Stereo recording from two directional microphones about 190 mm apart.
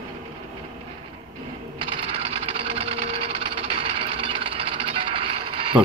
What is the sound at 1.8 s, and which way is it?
Sewing machine, 30° right (ahead or behind).